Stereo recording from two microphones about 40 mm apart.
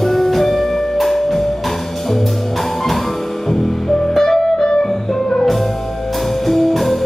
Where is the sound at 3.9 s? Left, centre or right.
Centre.